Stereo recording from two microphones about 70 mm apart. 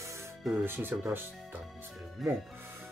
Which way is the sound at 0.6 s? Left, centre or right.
Right.